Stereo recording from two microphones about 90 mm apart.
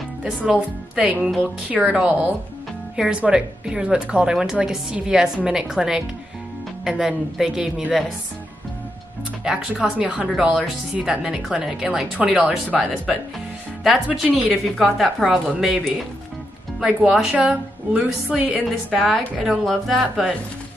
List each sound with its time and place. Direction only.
0.5 s a woman's voice: 10° right (ahead or behind)
1.4 s a woman's voice: 15° right (ahead or behind)
9.7 s a woman's voice: 15° right (ahead or behind)
14.8 s a woman's voice: centre (ahead or behind)
18.9 s speech: centre (ahead or behind)